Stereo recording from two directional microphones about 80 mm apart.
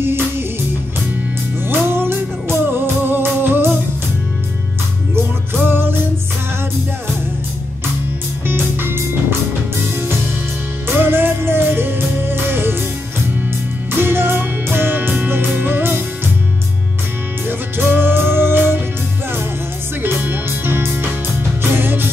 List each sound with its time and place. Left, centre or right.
0.0 s music: right
1.7 s music: right
5.1 s music: right
8.5 s music: right
10.9 s music: right
13.9 s music: right
17.5 s music: right
20.0 s music: right